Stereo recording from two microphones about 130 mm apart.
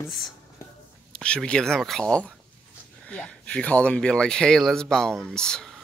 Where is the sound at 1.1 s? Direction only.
10° left (ahead or behind).